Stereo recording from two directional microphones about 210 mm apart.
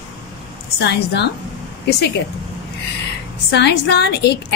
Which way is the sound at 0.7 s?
55° left (ahead or behind).